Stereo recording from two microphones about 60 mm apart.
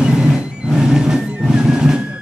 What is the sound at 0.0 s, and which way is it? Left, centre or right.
Music, centre.